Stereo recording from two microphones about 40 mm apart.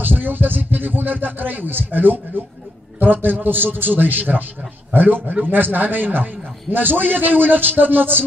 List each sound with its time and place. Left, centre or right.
0.0 s a man's voice: right